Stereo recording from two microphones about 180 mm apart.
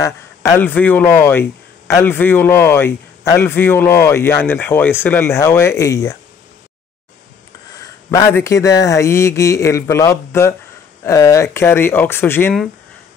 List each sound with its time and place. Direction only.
0.0 s speech: 15° left (ahead or behind)
7.7 s speech: 20° left (ahead or behind)